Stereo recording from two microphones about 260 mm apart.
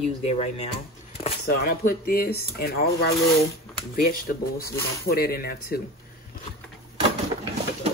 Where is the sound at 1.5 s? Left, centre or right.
Left.